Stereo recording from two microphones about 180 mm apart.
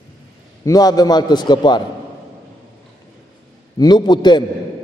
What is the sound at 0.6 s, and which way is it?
A man's voice, 20° left (ahead or behind).